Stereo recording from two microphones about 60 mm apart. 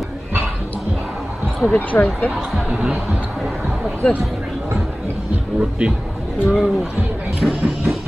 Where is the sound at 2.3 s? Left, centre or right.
Centre.